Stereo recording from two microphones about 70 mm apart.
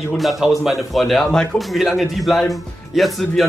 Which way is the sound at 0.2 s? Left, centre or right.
Centre.